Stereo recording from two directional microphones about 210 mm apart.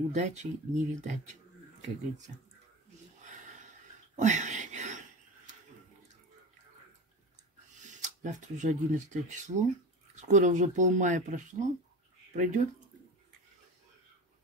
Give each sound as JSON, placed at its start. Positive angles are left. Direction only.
{"t": 0.1, "sound": "speech", "side_deg": -35}
{"t": 3.2, "sound": "a sound", "side_deg": -35}
{"t": 7.7, "sound": "speech", "side_deg": -35}